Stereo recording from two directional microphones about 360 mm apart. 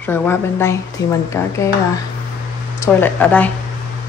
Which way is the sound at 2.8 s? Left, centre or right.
Centre.